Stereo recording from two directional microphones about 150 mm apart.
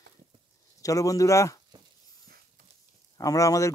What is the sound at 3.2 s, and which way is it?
Speech, 25° left (ahead or behind).